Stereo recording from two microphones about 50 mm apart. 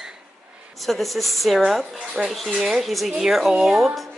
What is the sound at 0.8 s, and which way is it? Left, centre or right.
A woman's voice, centre.